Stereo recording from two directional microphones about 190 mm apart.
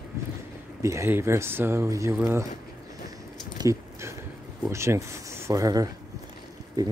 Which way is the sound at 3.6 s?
15° right (ahead or behind).